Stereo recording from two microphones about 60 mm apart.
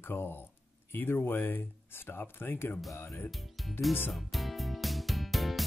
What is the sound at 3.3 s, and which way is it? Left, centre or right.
Speech, centre.